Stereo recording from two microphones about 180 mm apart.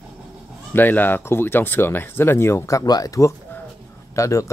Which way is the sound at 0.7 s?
10° left (ahead or behind).